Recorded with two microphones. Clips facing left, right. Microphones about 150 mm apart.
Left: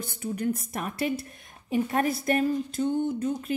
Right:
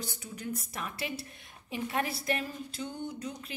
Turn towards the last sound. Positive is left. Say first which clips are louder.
# left 11 dB
turn(degrees=50)  # may be behind; listen again after turning